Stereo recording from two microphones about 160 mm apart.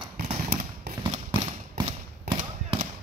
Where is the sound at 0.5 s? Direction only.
65° right (ahead or behind).